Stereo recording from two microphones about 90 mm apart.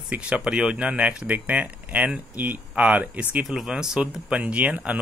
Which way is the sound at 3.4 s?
5° right (ahead or behind).